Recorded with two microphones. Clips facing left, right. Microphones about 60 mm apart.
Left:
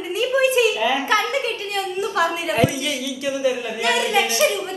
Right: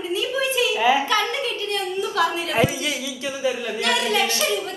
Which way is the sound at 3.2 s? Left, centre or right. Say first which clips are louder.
Left 3 dB; centre.